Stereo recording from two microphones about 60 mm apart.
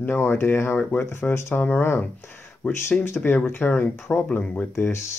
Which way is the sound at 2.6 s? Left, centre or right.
Left.